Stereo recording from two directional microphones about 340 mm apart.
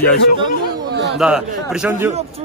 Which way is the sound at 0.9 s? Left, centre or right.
Right.